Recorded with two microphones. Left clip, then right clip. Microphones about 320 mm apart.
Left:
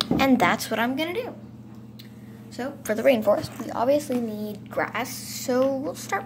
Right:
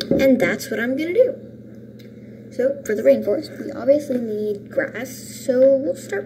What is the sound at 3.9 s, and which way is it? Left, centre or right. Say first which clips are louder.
Speech: right 4 dB; left.